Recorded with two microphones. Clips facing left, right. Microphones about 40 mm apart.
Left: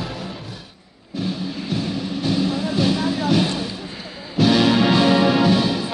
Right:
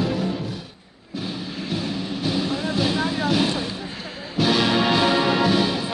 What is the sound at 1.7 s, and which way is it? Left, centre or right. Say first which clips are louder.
Music: left 2 dB; centre.